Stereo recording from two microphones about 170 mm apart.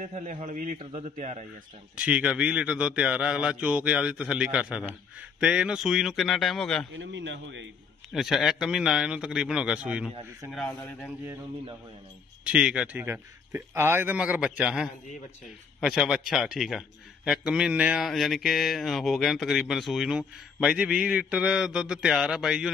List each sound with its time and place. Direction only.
0.0 s a man's voice: 50° right (ahead or behind)
0.7 s a man's voice: 35° right (ahead or behind)
2.0 s a man's voice: 5° right (ahead or behind)
7.0 s a man's voice: 90° right
8.1 s a man's voice: centre (ahead or behind)
12.4 s a man's voice: 5° right (ahead or behind)